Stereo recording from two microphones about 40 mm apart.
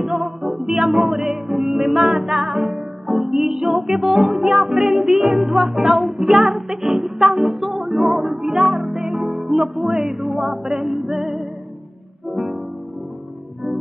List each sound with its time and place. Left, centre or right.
0.0 s music: centre